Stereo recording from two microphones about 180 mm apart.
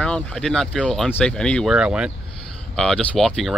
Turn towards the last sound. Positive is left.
turn(degrees=5)  # may be behind; listen again after turning